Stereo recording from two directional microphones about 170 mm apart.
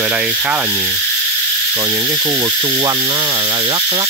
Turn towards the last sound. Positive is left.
turn(degrees=-20)  # may be behind; listen again after turning